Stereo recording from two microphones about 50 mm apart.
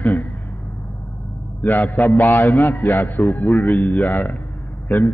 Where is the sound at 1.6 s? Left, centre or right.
Left.